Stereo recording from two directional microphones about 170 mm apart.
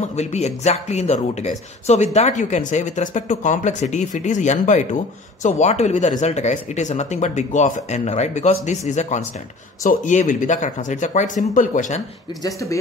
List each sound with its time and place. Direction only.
0.0 s speech: 40° left (ahead or behind)
12.4 s speech: 20° left (ahead or behind)